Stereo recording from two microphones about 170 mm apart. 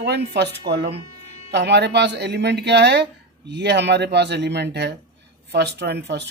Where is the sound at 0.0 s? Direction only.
80° right.